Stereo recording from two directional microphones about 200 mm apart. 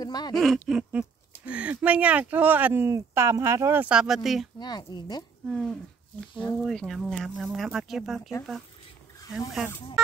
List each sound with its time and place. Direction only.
0.0 s a sound: 20° left (ahead or behind)
0.3 s speech: centre (ahead or behind)
4.6 s speech: 20° left (ahead or behind)
5.5 s speech: centre (ahead or behind)